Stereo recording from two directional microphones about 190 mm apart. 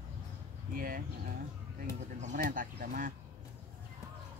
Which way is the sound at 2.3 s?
50° right (ahead or behind).